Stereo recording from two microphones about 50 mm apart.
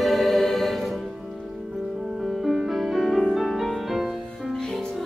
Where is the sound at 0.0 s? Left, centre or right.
Centre.